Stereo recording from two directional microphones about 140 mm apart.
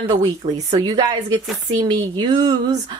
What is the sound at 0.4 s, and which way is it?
Speech, 45° right (ahead or behind).